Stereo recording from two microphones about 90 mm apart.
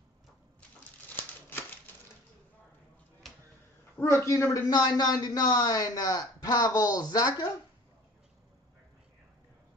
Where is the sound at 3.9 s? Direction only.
30° left (ahead or behind).